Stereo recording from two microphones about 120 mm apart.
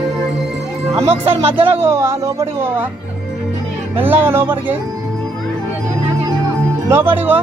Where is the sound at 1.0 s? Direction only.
55° right (ahead or behind).